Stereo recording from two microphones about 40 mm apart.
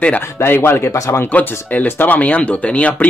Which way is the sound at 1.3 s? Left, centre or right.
Left.